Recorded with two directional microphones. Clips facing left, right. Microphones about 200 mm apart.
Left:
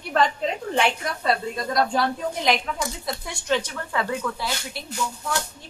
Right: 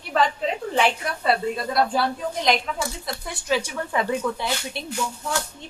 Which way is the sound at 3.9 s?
20° right (ahead or behind).